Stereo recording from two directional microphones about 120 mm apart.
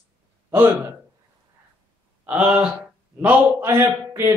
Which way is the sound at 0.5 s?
20° right (ahead or behind).